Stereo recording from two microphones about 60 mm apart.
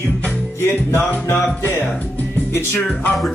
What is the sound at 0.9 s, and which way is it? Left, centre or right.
Speech, left.